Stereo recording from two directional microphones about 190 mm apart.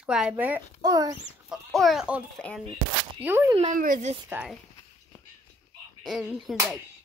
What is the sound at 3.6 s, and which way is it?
Speech, 45° right (ahead or behind).